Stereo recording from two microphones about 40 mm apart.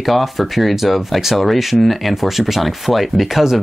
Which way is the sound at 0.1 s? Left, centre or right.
Centre.